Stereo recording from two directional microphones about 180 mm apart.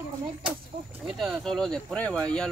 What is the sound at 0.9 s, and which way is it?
Speech, centre (ahead or behind).